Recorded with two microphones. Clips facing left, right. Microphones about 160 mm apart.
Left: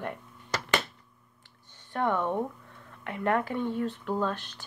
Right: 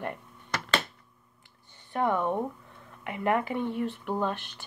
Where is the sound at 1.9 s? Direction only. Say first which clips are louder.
Right 1 dB; 10° right (ahead or behind).